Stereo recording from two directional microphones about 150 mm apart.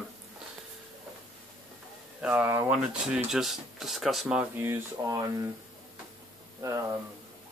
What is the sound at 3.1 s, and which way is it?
Speech, 5° right (ahead or behind).